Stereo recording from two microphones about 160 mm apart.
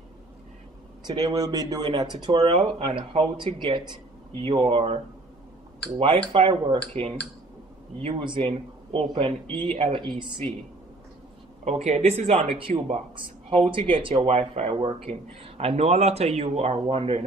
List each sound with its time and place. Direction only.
1.0 s speech: 25° right (ahead or behind)
6.3 s speech: 35° right (ahead or behind)
11.8 s speech: 40° right (ahead or behind)